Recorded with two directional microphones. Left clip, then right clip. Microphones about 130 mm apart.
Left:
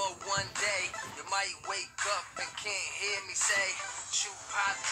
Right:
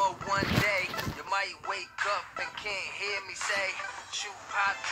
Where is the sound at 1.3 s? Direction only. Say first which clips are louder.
Right 2 dB; 30° right (ahead or behind).